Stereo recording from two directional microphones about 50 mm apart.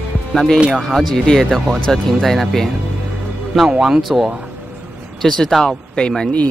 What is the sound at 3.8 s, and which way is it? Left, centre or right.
Speech, centre.